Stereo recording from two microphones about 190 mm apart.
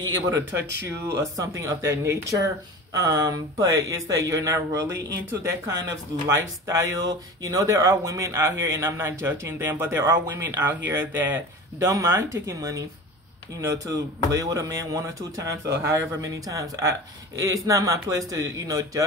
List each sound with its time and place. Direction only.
0.0 s speech: 20° right (ahead or behind)
0.6 s speech: 65° right (ahead or behind)
1.0 s speech: 15° right (ahead or behind)